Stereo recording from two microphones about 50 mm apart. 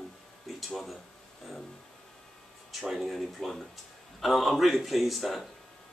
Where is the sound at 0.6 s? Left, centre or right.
Centre.